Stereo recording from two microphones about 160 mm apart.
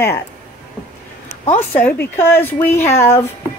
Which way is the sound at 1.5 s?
10° left (ahead or behind).